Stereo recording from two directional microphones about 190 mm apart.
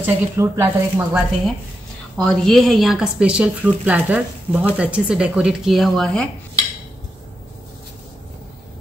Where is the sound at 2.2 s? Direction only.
Centre (ahead or behind).